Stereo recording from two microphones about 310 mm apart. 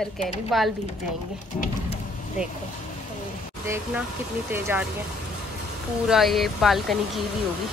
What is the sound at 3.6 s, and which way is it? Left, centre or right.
Speech, centre.